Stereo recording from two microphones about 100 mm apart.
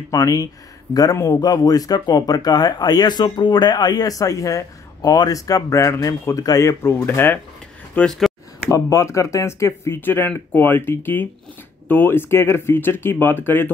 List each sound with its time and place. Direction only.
0.1 s speech: 40° left (ahead or behind); by 8.1 s 20° left (ahead or behind)
8.6 s speech: 30° left (ahead or behind)